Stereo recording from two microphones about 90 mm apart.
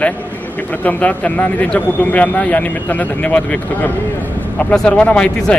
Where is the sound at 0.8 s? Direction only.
15° left (ahead or behind).